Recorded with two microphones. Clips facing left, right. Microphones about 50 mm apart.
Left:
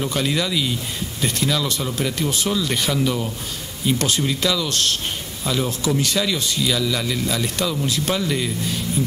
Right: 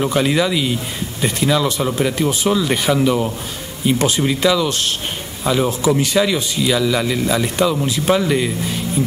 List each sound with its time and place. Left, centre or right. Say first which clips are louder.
0.0 s speech: right 6 dB; centre